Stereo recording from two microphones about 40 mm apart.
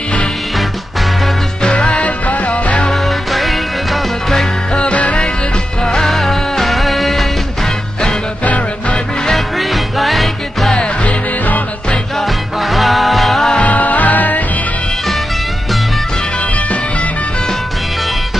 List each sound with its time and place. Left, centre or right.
1.6 s music: left
2.9 s music: centre
4.9 s music: left
5.9 s music: centre
9.3 s music: centre
11.1 s music: left
12.5 s music: centre
13.6 s music: left